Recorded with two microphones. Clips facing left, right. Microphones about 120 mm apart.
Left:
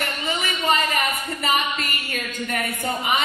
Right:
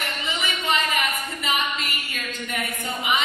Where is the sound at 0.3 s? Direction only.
40° left (ahead or behind).